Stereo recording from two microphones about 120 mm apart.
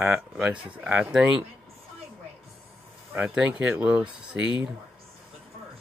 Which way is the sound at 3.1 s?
10° right (ahead or behind).